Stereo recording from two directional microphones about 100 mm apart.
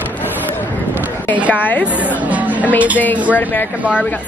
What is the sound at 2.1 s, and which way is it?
Music, 15° right (ahead or behind).